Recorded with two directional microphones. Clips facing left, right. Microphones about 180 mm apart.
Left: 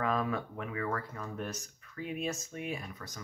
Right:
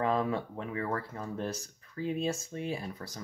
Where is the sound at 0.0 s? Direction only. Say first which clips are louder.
Right 3 dB; 25° right (ahead or behind).